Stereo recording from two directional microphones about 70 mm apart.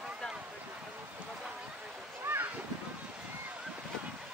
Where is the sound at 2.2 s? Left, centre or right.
Right.